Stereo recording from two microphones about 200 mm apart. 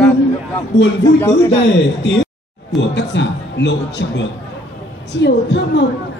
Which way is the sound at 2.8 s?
60° left (ahead or behind).